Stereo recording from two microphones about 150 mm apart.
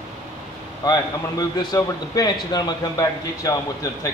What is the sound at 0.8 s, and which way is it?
A man's voice, 25° left (ahead or behind).